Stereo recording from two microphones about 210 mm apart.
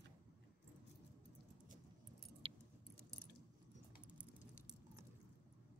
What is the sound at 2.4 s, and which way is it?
Keys jangling, 25° right (ahead or behind).